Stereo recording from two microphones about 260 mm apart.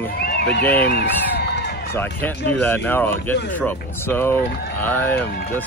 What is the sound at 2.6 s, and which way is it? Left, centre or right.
Speech, centre.